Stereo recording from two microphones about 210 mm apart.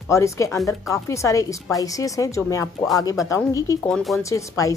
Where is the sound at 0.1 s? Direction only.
15° left (ahead or behind).